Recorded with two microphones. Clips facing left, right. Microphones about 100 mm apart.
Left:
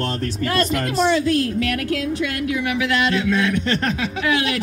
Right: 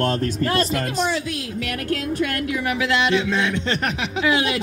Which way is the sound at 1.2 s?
5° right (ahead or behind).